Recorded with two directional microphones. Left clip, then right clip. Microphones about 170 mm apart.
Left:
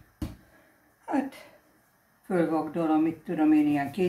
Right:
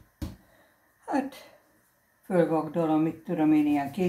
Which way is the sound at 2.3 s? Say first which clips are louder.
Right 2 dB; 15° right (ahead or behind).